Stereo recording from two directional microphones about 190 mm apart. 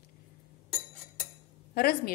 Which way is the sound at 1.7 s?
55° left (ahead or behind).